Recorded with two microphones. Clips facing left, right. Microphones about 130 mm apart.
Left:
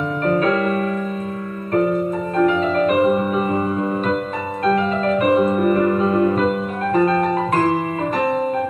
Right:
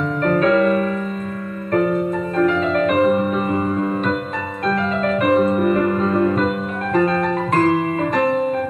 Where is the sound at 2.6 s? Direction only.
40° left (ahead or behind).